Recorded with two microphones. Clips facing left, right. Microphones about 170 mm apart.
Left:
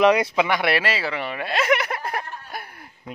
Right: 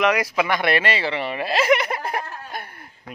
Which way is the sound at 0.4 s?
10° left (ahead or behind).